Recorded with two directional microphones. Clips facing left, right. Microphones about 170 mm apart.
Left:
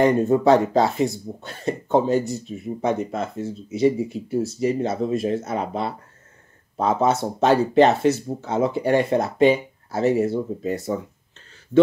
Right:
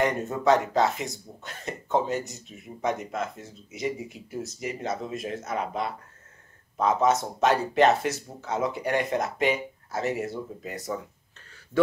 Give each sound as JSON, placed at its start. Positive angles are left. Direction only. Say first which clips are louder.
{"t": 0.0, "sound": "speech", "louder": "left 8 dB", "side_deg": 30}